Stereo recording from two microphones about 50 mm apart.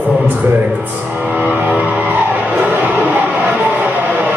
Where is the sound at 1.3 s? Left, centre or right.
Right.